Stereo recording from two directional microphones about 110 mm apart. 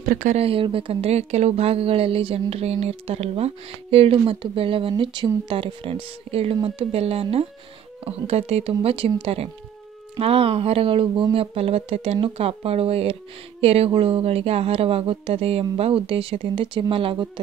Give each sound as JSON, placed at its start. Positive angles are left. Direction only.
{"t": 0.3, "sound": "speech", "side_deg": -60}